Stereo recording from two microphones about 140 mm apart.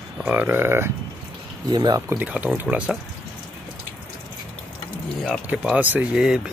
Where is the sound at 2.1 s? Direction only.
10° right (ahead or behind).